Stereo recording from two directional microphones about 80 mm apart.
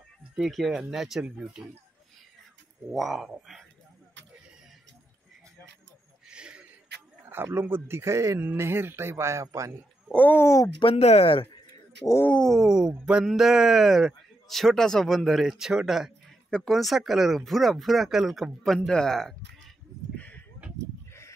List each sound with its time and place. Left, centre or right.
0.4 s speech: centre
2.9 s speech: centre
6.2 s a sound: centre
7.2 s speech: right
10.1 s speech: left
10.4 s speech: left
10.8 s speech: left
12.4 s speech: centre
20.2 s a sound: centre